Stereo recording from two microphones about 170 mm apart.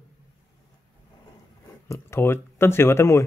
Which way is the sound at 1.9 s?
15° left (ahead or behind).